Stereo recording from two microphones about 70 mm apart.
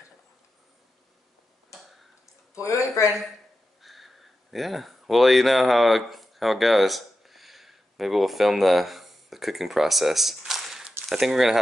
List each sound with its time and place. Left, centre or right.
2.5 s speech: left
3.8 s a sound: centre
11.1 s speech: centre